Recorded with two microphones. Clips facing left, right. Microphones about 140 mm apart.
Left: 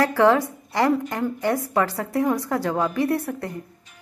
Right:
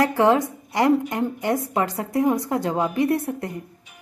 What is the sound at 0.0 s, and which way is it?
A woman's voice, 20° right (ahead or behind).